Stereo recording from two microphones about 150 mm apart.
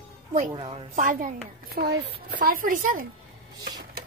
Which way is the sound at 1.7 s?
90° right.